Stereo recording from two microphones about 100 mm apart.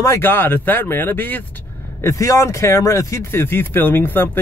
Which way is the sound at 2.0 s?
30° left (ahead or behind).